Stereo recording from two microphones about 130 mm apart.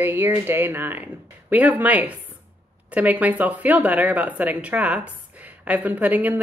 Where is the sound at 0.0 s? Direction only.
15° right (ahead or behind).